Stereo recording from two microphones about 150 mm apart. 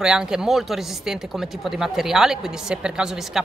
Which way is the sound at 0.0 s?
5° right (ahead or behind).